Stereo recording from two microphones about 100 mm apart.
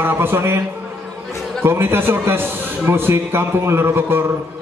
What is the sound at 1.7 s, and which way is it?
A man's voice, 25° right (ahead or behind).